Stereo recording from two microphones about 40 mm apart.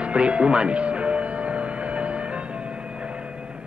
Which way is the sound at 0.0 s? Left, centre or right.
Right.